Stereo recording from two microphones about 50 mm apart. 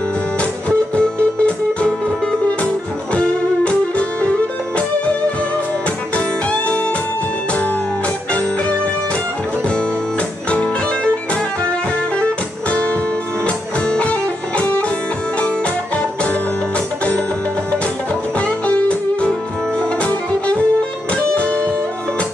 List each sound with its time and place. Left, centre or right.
0.4 s music: left
3.2 s music: left
12.2 s music: left
18.4 s music: left